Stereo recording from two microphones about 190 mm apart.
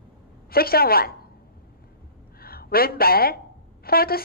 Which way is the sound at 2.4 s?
55° left (ahead or behind).